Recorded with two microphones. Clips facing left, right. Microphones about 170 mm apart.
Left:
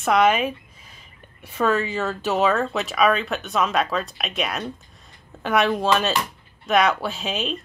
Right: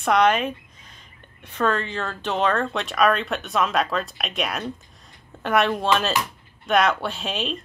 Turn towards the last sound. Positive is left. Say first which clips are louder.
# left 1 dB
turn(degrees=0)  # may be behind; listen again after turning